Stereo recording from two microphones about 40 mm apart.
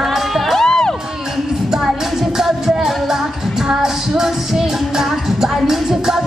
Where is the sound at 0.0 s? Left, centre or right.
Centre.